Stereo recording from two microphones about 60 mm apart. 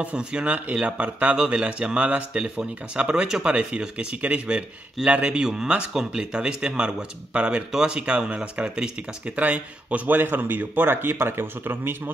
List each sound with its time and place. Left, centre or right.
0.0 s speech: centre; by 12.1 s right